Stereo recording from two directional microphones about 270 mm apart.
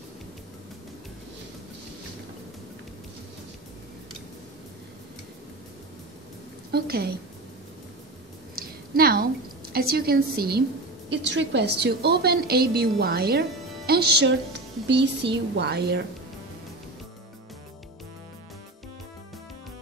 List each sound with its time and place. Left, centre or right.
6.7 s a woman's voice: right
8.5 s a sound: right
11.1 s a woman's voice: right